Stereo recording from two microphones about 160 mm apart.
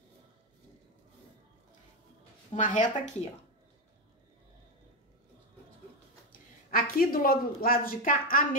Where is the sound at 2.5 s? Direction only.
50° left (ahead or behind).